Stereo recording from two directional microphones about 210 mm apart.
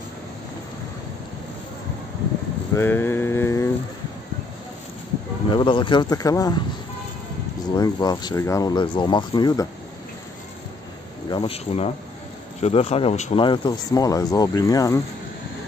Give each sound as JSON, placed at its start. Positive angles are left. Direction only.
{"t": 2.7, "sound": "a sound", "side_deg": 10}
{"t": 5.5, "sound": "speech", "side_deg": 25}
{"t": 7.7, "sound": "speech", "side_deg": 20}
{"t": 11.2, "sound": "speech", "side_deg": 25}